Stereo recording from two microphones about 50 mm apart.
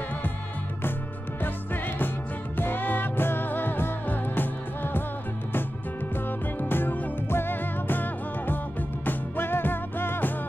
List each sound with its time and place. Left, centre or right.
1.4 s music: left
6.2 s music: left